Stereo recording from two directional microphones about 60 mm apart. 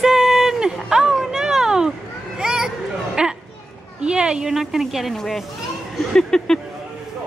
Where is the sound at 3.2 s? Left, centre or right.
Centre.